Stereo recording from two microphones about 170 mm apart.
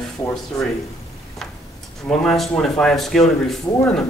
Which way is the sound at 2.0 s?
Centre (ahead or behind).